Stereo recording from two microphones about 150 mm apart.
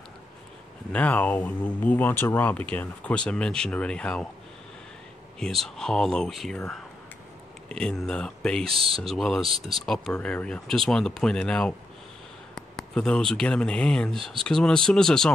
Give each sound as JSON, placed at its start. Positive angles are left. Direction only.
{"t": 0.9, "sound": "speech", "side_deg": 10}
{"t": 5.4, "sound": "speech", "side_deg": 5}
{"t": 8.6, "sound": "speech", "side_deg": -40}
{"t": 9.1, "sound": "speech", "side_deg": 0}